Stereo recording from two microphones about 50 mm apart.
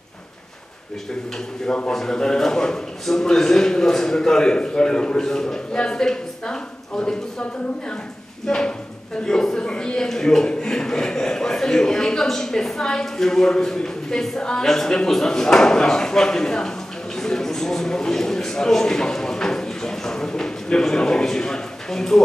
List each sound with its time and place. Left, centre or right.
1.9 s a man's voice: centre
8.5 s a man's voice: centre